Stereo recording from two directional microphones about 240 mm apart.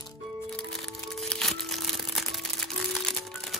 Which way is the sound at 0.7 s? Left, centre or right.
Centre.